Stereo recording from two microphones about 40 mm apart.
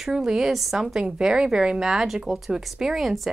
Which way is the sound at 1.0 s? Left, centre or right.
Centre.